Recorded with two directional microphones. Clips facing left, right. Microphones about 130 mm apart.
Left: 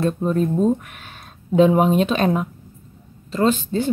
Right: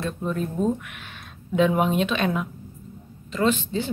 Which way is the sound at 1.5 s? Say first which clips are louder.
Left 6 dB; 35° left (ahead or behind).